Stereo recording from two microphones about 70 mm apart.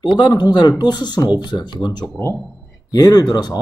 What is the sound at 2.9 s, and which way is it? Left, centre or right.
Speech, left.